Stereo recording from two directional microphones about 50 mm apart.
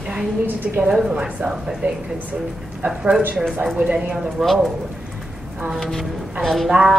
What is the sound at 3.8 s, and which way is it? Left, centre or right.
Speech, right.